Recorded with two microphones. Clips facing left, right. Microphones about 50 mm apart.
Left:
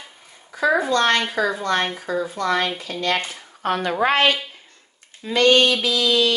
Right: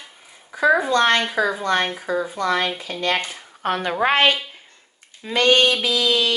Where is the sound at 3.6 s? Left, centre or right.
Right.